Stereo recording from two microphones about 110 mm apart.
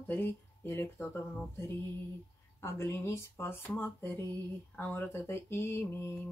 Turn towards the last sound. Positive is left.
turn(degrees=20)  # may be behind; listen again after turning